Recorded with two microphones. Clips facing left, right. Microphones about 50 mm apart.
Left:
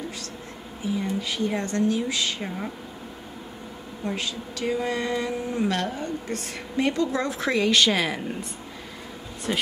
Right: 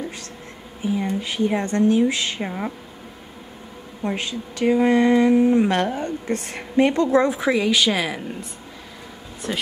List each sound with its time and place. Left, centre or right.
0.9 s speech: right
4.0 s speech: right
7.3 s a woman's voice: centre
9.5 s a woman's voice: centre